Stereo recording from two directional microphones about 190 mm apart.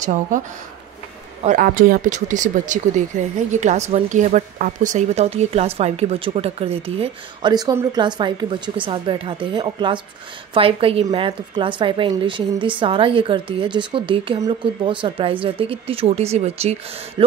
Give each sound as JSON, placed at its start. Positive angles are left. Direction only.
{"t": 0.0, "sound": "speech", "side_deg": -40}
{"t": 1.4, "sound": "speech", "side_deg": -45}
{"t": 7.5, "sound": "a woman's voice", "side_deg": -20}